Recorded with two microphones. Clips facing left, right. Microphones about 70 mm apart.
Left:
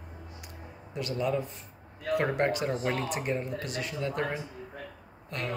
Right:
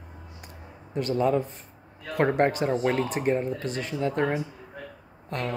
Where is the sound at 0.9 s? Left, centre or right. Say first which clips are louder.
Right 6 dB; right.